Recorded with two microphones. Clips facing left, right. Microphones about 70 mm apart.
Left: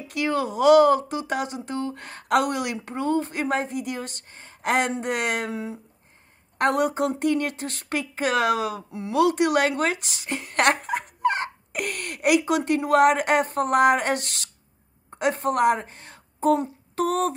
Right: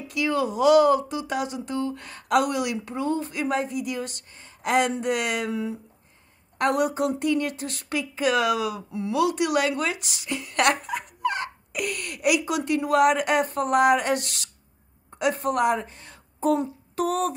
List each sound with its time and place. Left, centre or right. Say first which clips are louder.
0.1 s a woman's voice: even; left
16.9 s humming: left 2 dB; left